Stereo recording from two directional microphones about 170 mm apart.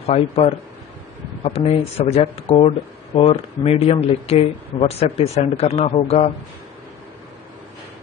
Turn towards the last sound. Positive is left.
turn(degrees=35)  # may be behind; listen again after turning